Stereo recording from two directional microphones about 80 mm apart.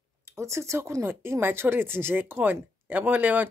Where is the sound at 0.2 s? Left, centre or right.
Right.